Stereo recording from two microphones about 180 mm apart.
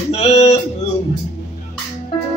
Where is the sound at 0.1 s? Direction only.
35° left (ahead or behind).